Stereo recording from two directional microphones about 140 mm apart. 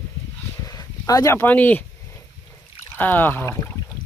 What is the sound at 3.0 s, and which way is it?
Speech, 15° left (ahead or behind).